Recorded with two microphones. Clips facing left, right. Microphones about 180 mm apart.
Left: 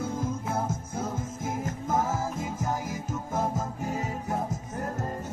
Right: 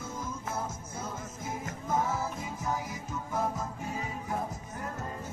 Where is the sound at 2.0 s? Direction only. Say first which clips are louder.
Left 3 dB; 90° left.